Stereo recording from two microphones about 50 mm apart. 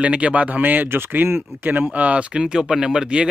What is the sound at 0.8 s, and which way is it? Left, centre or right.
Speech, right.